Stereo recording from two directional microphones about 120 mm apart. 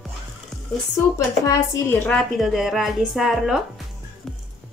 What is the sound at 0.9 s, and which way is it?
Speech, 25° left (ahead or behind).